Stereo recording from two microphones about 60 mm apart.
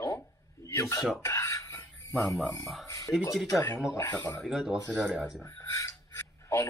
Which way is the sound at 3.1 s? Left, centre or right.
Centre.